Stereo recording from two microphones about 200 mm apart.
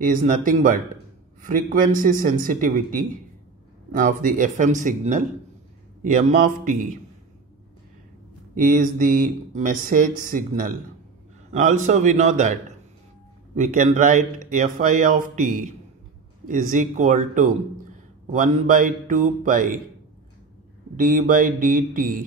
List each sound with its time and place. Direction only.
0.0 s speech: 40° right (ahead or behind)
8.5 s speech: 40° right (ahead or behind)
13.6 s speech: 40° right (ahead or behind)
20.9 s speech: 45° right (ahead or behind)